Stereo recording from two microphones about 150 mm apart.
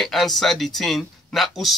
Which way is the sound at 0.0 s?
Centre (ahead or behind).